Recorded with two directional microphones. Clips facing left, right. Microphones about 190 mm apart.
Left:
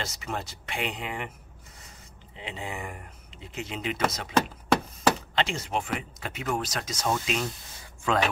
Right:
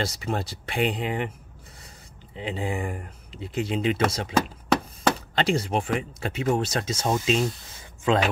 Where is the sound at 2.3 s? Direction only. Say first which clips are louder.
Right 7 dB; 35° right (ahead or behind).